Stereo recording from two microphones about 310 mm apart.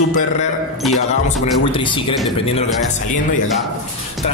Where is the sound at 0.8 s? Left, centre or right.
Centre.